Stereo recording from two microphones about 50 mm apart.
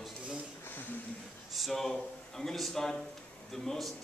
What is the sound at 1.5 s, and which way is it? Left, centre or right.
A man's voice, centre.